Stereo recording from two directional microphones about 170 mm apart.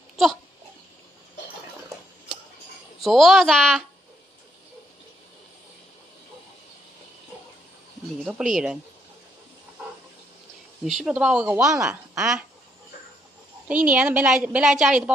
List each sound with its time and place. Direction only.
3.0 s speech: centre (ahead or behind)
8.3 s speech: 5° right (ahead or behind)
11.1 s speech: 5° right (ahead or behind)
13.7 s a woman's voice: 5° right (ahead or behind)